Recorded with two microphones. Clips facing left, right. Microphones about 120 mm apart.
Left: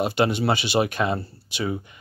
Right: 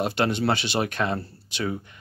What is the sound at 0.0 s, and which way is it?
Speech, 5° left (ahead or behind).